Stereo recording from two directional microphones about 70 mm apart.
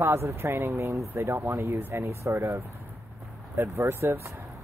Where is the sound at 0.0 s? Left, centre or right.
Right.